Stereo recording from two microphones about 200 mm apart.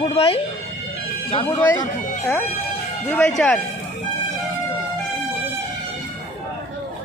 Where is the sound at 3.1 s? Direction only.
5° left (ahead or behind).